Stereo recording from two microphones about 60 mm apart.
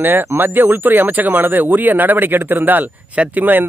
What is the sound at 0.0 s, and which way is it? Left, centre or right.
Speech, right.